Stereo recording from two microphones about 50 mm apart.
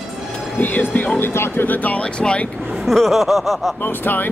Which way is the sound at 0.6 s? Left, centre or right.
Left.